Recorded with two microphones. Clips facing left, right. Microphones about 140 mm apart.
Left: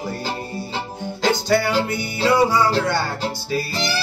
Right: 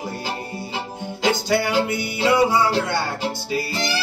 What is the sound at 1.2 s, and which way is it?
Music, 15° right (ahead or behind).